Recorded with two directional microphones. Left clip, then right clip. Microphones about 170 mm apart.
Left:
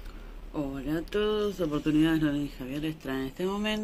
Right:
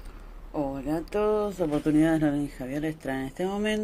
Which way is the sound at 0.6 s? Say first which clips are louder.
Right 3 dB; 10° right (ahead or behind).